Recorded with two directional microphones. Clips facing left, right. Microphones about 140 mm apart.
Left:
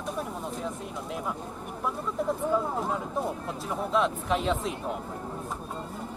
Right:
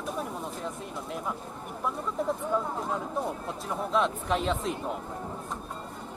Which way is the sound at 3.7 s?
Centre (ahead or behind).